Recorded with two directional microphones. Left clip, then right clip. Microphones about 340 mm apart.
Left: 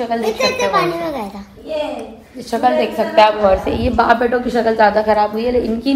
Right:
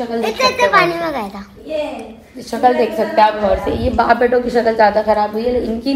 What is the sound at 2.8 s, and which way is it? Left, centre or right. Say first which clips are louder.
A woman's voice: left 1 dB; centre.